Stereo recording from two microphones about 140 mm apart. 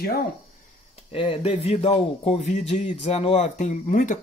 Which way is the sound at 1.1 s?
40° left (ahead or behind).